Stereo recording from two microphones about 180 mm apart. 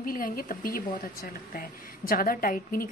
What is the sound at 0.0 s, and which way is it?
A woman's voice, 50° left (ahead or behind).